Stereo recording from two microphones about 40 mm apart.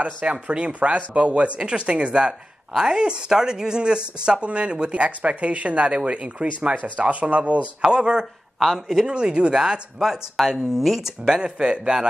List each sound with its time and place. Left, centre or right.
0.0 s speech: right
7.8 s speech: right
8.5 s speech: centre
9.0 s speech: right
10.0 s speech: centre
11.4 s speech: right